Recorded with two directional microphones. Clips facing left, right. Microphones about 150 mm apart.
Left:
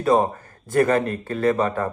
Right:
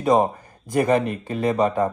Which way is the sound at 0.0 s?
15° right (ahead or behind).